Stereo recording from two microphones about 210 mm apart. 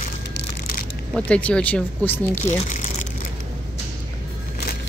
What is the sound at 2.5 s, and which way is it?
Speech, 35° left (ahead or behind).